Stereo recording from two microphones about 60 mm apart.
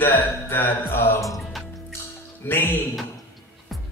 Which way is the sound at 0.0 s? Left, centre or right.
Left.